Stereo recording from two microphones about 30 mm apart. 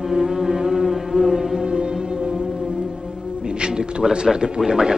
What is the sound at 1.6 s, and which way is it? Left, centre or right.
Music, right.